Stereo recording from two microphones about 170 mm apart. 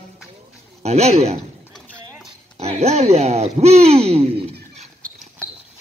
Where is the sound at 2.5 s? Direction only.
40° right (ahead or behind).